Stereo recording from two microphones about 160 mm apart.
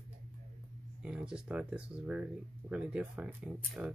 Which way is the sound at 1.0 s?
5° right (ahead or behind).